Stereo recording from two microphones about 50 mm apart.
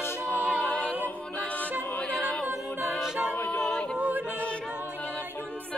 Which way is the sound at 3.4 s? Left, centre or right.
Left.